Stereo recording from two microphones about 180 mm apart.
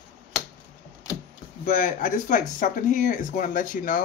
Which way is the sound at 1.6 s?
45° left (ahead or behind).